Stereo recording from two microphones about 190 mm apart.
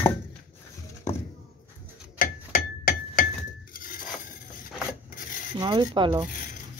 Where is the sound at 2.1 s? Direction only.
50° left (ahead or behind).